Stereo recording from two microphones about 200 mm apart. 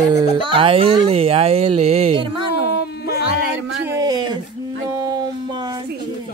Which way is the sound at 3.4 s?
60° right (ahead or behind).